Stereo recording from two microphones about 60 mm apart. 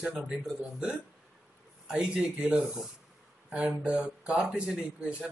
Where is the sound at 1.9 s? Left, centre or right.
Centre.